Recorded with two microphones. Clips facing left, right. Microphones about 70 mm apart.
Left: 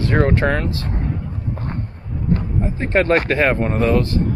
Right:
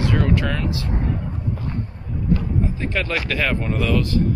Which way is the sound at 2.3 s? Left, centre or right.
Left.